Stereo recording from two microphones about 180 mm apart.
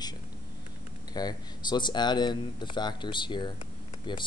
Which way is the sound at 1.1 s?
25° left (ahead or behind).